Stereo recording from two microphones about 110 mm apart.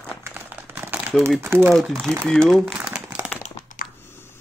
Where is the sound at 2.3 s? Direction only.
Centre (ahead or behind).